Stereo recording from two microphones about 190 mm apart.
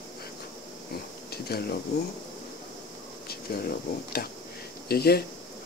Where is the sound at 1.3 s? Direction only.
55° left (ahead or behind).